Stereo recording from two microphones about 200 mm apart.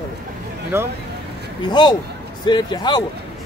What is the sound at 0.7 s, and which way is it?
Speech, 15° right (ahead or behind).